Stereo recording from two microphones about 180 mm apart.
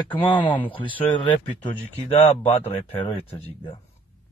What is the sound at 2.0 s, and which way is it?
Speech, 30° left (ahead or behind).